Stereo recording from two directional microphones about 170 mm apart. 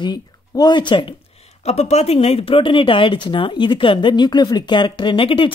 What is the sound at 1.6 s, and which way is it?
Speech, 40° left (ahead or behind).